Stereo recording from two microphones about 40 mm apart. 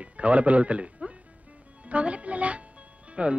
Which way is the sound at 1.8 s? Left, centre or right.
Right.